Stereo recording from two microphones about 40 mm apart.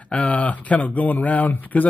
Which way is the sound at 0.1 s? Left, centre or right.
Left.